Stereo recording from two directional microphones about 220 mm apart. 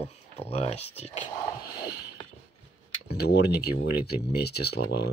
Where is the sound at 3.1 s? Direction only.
45° left (ahead or behind).